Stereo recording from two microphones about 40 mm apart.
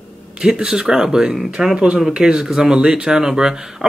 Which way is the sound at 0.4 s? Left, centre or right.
Centre.